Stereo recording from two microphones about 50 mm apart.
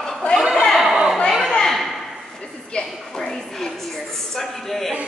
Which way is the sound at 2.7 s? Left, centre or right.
Left.